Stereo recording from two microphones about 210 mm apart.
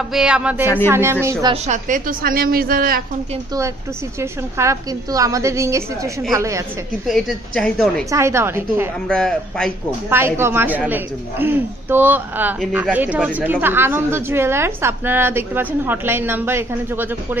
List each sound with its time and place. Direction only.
0.1 s a woman's voice: 5° right (ahead or behind)
1.5 s a woman's voice: 35° right (ahead or behind)
4.2 s speech: 15° right (ahead or behind)
7.1 s a woman's voice: centre (ahead or behind)
8.1 s speech: 15° right (ahead or behind)
9.0 s a woman's voice: centre (ahead or behind)
10.0 s speech: 10° right (ahead or behind)